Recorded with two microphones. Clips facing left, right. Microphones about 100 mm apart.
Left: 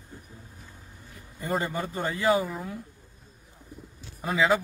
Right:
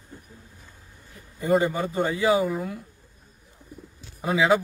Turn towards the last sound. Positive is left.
turn(degrees=-5)  # may be behind; listen again after turning